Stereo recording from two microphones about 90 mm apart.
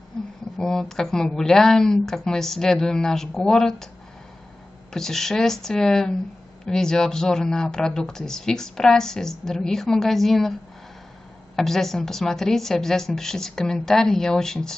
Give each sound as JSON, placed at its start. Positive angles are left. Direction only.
{"t": 0.2, "sound": "a sound", "side_deg": 5}
{"t": 0.6, "sound": "speech", "side_deg": 5}
{"t": 4.9, "sound": "speech", "side_deg": 5}
{"t": 11.5, "sound": "speech", "side_deg": 5}